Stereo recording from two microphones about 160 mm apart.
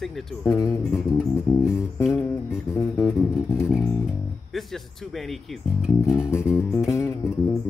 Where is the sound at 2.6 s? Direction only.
20° left (ahead or behind).